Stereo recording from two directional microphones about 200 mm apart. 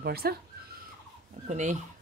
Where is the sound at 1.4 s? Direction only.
35° right (ahead or behind).